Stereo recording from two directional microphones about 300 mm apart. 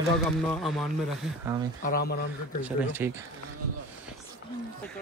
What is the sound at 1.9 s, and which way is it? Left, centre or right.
Speech, left.